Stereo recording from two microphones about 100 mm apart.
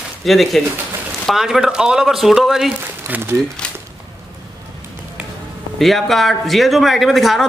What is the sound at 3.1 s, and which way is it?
Speech, 25° right (ahead or behind).